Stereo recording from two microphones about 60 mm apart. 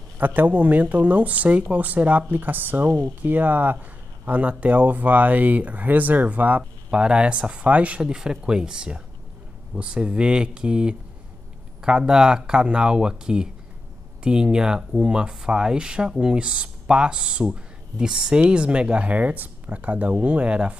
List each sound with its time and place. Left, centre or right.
0.2 s speech: right
6.9 s speech: centre